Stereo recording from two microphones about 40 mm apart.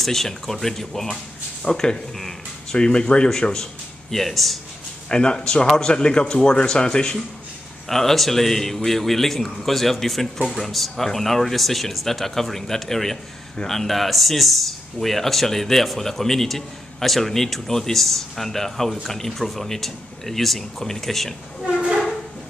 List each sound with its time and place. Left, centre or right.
0.0 s speech: centre
2.7 s a man's voice: left
4.1 s a man's voice: centre
5.1 s a man's voice: left
7.9 s a man's voice: centre
21.6 s train: right